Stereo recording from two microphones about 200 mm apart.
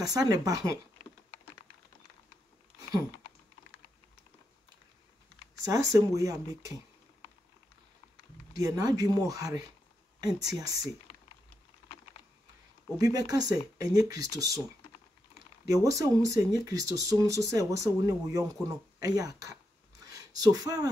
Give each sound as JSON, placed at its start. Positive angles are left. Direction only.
{"t": 0.0, "sound": "speech", "side_deg": -15}
{"t": 5.6, "sound": "speech", "side_deg": -15}
{"t": 8.5, "sound": "speech", "side_deg": -20}
{"t": 12.9, "sound": "speech", "side_deg": -20}
{"t": 15.3, "sound": "speech", "side_deg": -15}